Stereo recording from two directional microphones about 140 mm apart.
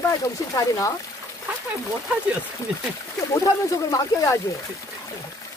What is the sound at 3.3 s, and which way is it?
Speech, 25° left (ahead or behind).